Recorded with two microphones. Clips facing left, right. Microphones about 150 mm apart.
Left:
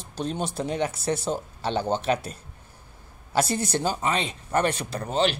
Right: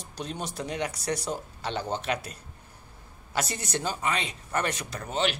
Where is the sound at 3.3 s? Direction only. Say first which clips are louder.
Left 6 dB; 30° left (ahead or behind).